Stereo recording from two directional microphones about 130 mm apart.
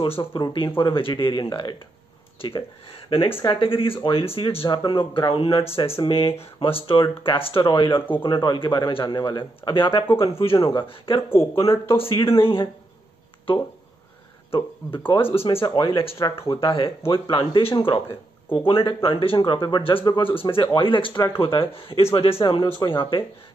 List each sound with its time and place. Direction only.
0.0 s speech: 40° left (ahead or behind)
14.5 s speech: 45° left (ahead or behind)